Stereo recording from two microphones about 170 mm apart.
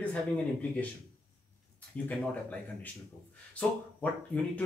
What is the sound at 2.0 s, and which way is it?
Speech, 10° left (ahead or behind).